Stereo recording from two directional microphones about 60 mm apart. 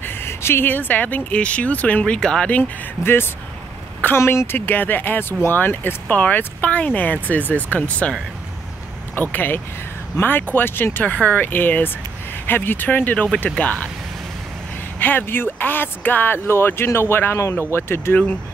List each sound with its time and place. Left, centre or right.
0.0 s speech: left
2.1 s speech: centre
3.0 s speech: left
4.2 s speech: left
4.5 s speech: left
9.1 s speech: left
11.1 s speech: left
15.0 s speech: left
16.4 s speech: left